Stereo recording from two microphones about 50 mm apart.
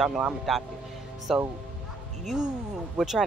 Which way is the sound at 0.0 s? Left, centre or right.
Centre.